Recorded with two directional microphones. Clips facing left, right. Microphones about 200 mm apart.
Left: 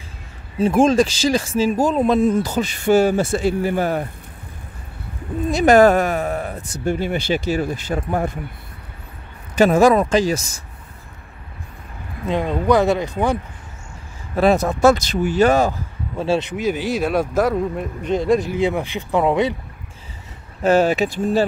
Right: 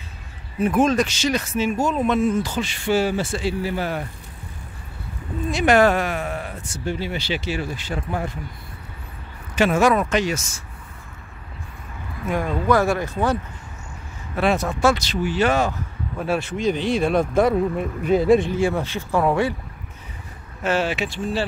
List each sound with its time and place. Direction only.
0.6 s speech: 30° left (ahead or behind); by 4.0 s 50° left (ahead or behind)
5.5 s speech: 40° left (ahead or behind)
9.6 s speech: 35° left (ahead or behind)
12.3 s speech: 20° left (ahead or behind)
14.3 s speech: 40° left (ahead or behind)
16.2 s speech: 25° left (ahead or behind)
16.5 s speech: 5° left (ahead or behind)
18.5 s speech: 15° left (ahead or behind)
20.6 s speech: 40° left (ahead or behind)